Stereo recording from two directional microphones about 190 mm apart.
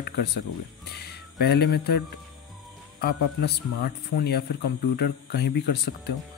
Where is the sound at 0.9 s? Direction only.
60° left (ahead or behind).